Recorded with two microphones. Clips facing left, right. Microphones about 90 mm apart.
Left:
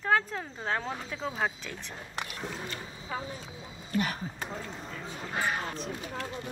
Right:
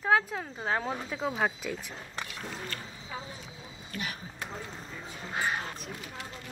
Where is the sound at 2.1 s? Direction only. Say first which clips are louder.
Left 2 dB; 20° left (ahead or behind).